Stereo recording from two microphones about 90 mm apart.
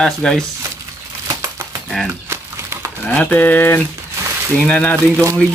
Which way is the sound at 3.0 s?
15° left (ahead or behind).